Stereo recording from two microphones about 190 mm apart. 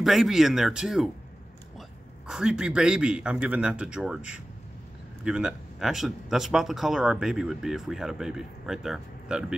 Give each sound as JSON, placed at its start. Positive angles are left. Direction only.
{"t": 0.0, "sound": "a man's voice", "side_deg": 0}